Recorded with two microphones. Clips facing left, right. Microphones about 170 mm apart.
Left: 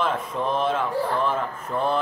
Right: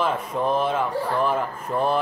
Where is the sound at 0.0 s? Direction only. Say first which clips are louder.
Right 2 dB; 5° right (ahead or behind).